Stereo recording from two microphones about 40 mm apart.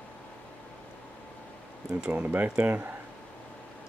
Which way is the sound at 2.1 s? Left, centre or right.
Right.